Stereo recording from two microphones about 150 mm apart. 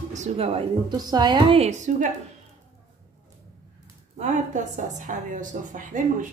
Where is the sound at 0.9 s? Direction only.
25° right (ahead or behind); by 2.1 s 55° right (ahead or behind).